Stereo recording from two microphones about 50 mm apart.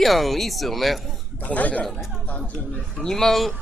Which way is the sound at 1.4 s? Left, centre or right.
Left.